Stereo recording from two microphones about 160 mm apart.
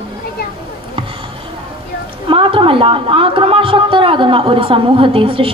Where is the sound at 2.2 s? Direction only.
35° right (ahead or behind).